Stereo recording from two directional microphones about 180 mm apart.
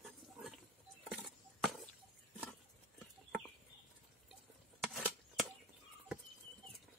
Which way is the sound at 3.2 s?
5° left (ahead or behind).